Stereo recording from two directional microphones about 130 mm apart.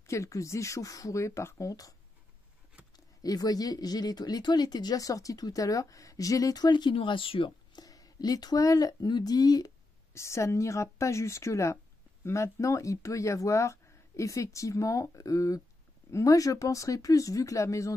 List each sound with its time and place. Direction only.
0.0 s speech: 25° left (ahead or behind)
3.2 s speech: 30° left (ahead or behind)